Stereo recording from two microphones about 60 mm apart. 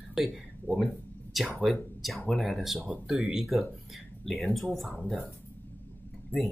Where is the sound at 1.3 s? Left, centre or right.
Centre.